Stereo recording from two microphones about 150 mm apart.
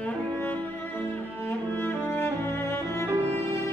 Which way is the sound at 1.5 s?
10° left (ahead or behind).